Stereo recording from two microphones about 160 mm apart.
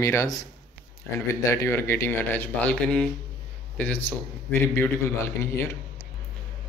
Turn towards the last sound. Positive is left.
turn(degrees=15)  # may be behind; listen again after turning